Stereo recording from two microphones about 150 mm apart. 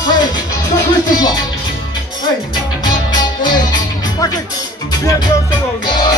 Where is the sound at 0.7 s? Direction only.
30° left (ahead or behind).